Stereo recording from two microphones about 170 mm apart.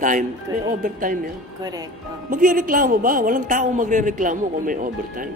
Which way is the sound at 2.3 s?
55° right (ahead or behind).